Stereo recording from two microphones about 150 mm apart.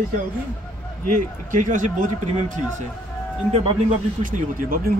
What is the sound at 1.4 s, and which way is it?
Speech, 60° right (ahead or behind).